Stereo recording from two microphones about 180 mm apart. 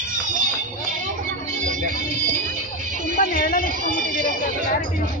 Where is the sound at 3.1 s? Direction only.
50° left (ahead or behind).